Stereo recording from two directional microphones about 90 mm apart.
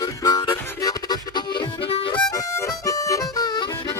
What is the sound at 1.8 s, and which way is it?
Harmonica, 80° left.